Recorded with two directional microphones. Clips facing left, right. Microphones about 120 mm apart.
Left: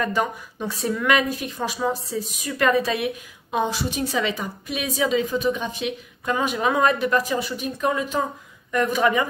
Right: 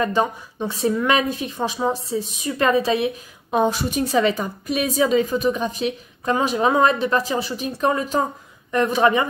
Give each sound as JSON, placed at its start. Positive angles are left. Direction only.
{"t": 0.0, "sound": "speech", "side_deg": -25}
{"t": 3.5, "sound": "a woman's voice", "side_deg": -45}